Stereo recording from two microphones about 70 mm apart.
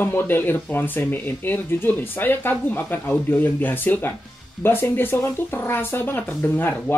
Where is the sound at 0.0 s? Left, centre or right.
Left.